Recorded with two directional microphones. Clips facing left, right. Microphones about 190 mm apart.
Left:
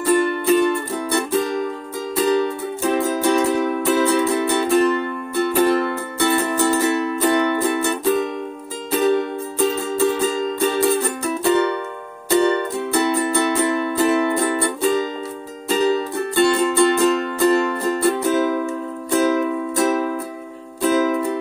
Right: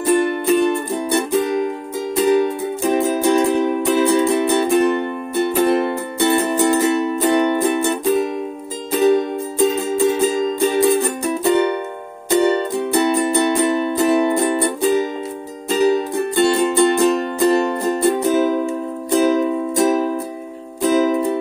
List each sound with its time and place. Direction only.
0.0 s music: 20° right (ahead or behind)
9.9 s music: 15° right (ahead or behind)